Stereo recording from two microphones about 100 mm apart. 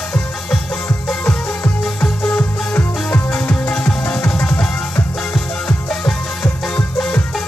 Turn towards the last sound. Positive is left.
turn(degrees=5)  # may be behind; listen again after turning